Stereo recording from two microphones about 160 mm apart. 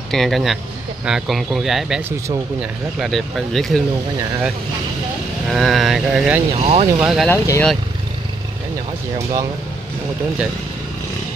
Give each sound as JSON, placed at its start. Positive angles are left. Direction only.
{"t": 0.1, "sound": "speech", "side_deg": 0}
{"t": 3.0, "sound": "speech", "side_deg": 0}
{"t": 5.5, "sound": "speech", "side_deg": 0}
{"t": 6.6, "sound": "speech", "side_deg": -40}
{"t": 7.0, "sound": "speech", "side_deg": -5}
{"t": 7.2, "sound": "speech", "side_deg": 15}